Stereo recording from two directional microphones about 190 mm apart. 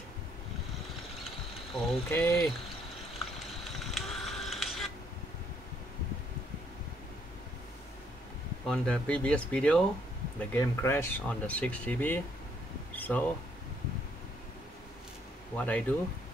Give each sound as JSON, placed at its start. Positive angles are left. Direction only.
{"t": 1.8, "sound": "speech", "side_deg": 0}
{"t": 2.0, "sound": "speech", "side_deg": 10}
{"t": 3.1, "sound": "a sound", "side_deg": 0}
{"t": 8.6, "sound": "speech", "side_deg": 5}
{"t": 12.9, "sound": "air conditioning", "side_deg": 10}
{"t": 15.5, "sound": "speech", "side_deg": 10}